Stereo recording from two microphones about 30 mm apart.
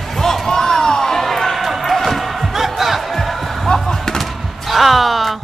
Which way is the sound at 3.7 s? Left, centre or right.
Centre.